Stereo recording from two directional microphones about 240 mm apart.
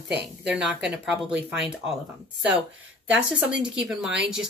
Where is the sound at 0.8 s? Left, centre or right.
Centre.